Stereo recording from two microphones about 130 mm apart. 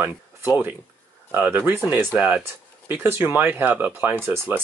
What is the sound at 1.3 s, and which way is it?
Speech, 15° right (ahead or behind).